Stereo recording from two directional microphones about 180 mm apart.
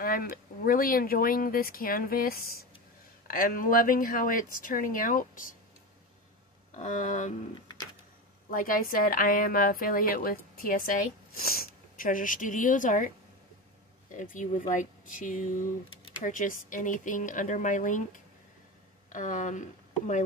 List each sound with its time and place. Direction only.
0.0 s a woman's voice: 55° left (ahead or behind)
6.7 s speech: 40° left (ahead or behind)
8.5 s a woman's voice: 50° left (ahead or behind)
14.1 s a woman's voice: 45° left (ahead or behind)